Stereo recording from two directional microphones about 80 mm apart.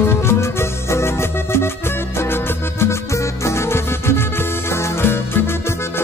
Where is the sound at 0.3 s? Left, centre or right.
Left.